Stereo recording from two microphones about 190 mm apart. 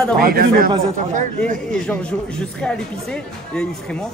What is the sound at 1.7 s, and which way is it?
Speech, 5° left (ahead or behind).